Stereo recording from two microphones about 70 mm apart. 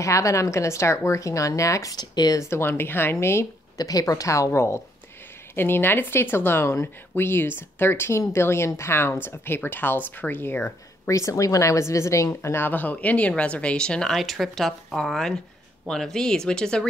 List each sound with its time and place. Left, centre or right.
0.0 s speech: left
2.0 s speech: left
2.3 s speech: left
3.7 s speech: left
11.1 s speech: left; by 14.1 s centre
14.1 s speech: centre